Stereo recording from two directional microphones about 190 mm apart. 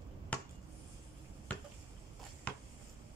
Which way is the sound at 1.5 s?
5° left (ahead or behind).